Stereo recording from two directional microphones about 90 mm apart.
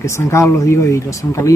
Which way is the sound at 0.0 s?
30° left (ahead or behind).